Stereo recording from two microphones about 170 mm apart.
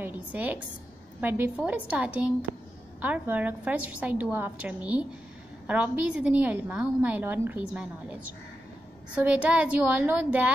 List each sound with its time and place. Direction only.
0.0 s a woman's voice: 10° right (ahead or behind)